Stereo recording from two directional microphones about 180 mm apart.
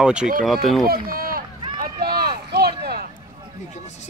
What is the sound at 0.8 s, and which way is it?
Run, 55° right (ahead or behind).